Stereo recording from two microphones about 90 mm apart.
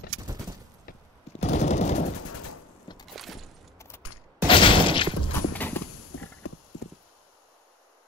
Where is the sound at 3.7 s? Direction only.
30° left (ahead or behind).